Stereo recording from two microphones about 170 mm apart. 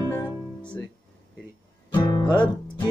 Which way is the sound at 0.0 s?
20° left (ahead or behind).